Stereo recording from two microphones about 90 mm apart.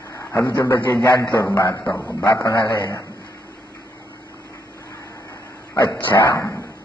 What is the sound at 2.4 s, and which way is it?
Speech, 55° left (ahead or behind).